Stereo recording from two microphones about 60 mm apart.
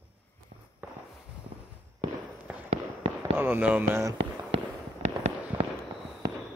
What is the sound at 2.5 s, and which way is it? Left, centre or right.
Fireworks, right.